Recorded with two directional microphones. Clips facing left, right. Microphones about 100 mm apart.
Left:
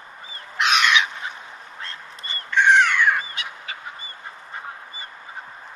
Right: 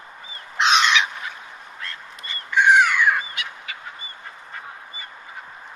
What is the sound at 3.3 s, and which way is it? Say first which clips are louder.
Bird: even; 30° left (ahead or behind).